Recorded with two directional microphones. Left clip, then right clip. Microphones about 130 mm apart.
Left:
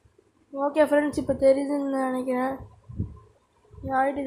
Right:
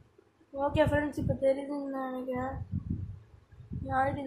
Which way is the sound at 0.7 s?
55° left (ahead or behind).